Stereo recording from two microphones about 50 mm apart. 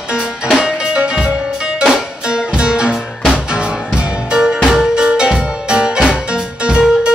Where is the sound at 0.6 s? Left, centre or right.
Centre.